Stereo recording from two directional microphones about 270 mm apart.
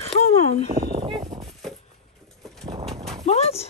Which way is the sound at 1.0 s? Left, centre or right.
Centre.